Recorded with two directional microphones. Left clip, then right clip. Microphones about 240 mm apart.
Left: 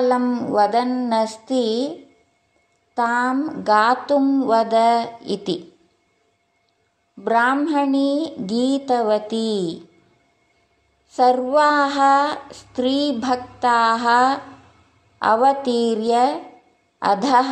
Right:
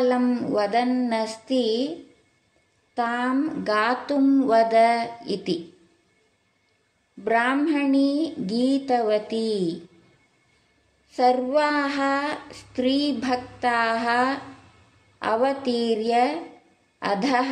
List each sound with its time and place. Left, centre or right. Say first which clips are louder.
0.0 s speech: left 3 dB; centre
2.9 s speech: left 5 dB; centre
7.2 s speech: left 4 dB; centre
11.1 s speech: left 4 dB; centre